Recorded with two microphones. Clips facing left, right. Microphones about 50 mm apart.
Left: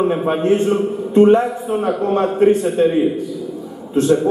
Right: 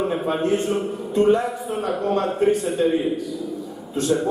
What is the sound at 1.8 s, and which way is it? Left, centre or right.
A man's voice, left.